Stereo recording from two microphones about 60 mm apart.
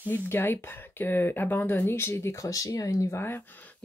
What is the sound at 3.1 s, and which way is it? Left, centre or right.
Speech, left.